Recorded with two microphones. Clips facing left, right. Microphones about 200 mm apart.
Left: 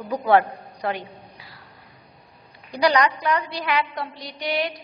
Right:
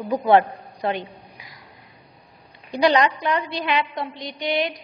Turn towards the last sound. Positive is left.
turn(degrees=-20)  # may be behind; listen again after turning